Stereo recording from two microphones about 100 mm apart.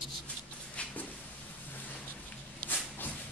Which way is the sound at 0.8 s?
10° left (ahead or behind).